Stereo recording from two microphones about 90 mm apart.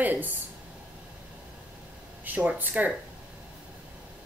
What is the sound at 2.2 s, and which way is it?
Speech, 15° right (ahead or behind).